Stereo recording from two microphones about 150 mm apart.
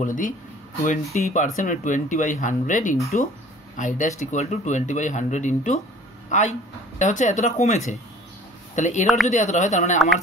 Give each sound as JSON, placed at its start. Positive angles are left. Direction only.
{"t": 0.0, "sound": "speech", "side_deg": 60}